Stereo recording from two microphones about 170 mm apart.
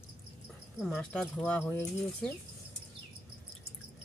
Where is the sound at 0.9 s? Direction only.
5° left (ahead or behind).